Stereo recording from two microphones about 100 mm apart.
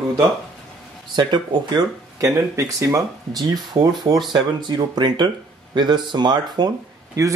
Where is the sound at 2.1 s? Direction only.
30° right (ahead or behind).